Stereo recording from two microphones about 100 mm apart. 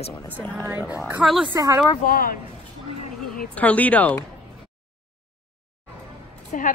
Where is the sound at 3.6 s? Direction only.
15° left (ahead or behind).